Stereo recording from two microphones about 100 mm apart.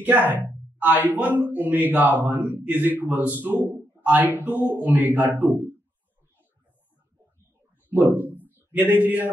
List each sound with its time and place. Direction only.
0.7 s speech: 15° right (ahead or behind)
7.9 s a sound: 15° right (ahead or behind)
8.5 s speech: 20° right (ahead or behind)